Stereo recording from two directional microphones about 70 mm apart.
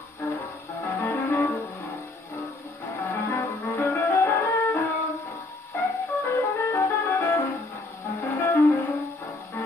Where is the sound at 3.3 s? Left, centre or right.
Left.